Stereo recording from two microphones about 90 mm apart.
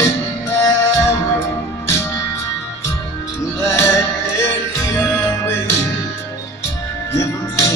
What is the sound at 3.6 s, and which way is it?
Music, 30° left (ahead or behind).